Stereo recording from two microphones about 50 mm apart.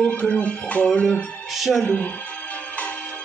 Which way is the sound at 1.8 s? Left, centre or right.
Left.